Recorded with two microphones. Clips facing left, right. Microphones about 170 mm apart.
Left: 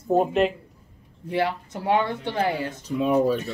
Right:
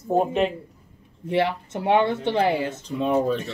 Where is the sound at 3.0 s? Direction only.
5° left (ahead or behind).